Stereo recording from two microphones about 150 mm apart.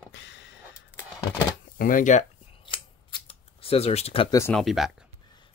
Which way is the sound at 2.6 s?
35° left (ahead or behind).